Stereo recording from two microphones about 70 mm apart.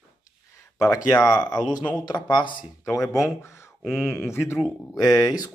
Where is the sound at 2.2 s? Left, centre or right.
Left.